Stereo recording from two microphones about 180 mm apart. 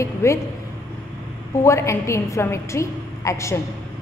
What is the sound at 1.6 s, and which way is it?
A woman's voice, 15° left (ahead or behind).